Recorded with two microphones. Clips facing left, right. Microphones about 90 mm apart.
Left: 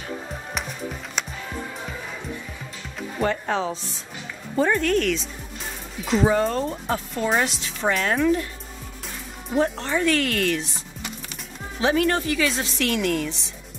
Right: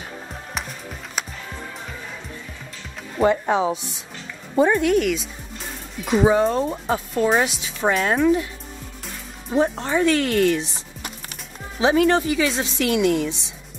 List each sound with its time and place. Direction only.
1.2 s music: 5° right (ahead or behind)
3.2 s speech: 15° right (ahead or behind)
9.8 s speech: 10° right (ahead or behind)
10.0 s speech: 25° right (ahead or behind)
11.8 s speech: 20° right (ahead or behind)